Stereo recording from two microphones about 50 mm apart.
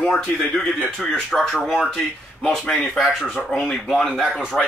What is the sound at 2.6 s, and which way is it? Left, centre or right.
Speech, left.